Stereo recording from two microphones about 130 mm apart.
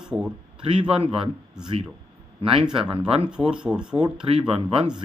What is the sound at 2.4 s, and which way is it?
Speech, 45° right (ahead or behind).